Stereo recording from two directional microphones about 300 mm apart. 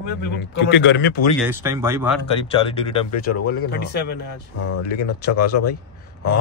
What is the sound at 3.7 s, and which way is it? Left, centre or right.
Speech, left.